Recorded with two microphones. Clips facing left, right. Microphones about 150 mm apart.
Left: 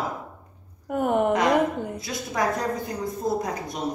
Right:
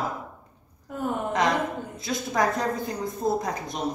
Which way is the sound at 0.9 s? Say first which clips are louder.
Left 7 dB; 65° left (ahead or behind).